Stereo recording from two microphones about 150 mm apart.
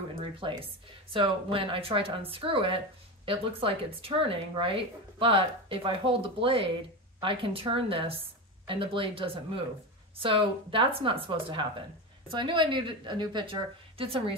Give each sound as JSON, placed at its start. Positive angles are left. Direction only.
{"t": 1.1, "sound": "speech", "side_deg": -35}